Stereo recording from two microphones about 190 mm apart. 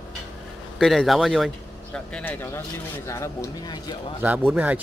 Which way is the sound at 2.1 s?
10° left (ahead or behind).